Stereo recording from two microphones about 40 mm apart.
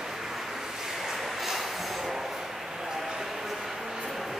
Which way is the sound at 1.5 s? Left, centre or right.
Centre.